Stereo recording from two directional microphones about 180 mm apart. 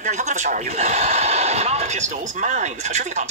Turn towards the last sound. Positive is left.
turn(degrees=-40)  # may be behind; listen again after turning